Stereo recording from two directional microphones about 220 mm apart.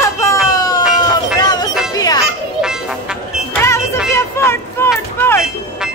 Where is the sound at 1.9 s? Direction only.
15° left (ahead or behind).